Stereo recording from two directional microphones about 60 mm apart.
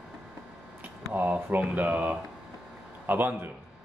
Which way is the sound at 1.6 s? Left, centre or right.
Right.